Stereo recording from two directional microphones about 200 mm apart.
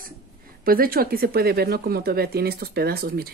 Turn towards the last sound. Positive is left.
turn(degrees=-50)  # may be behind; listen again after turning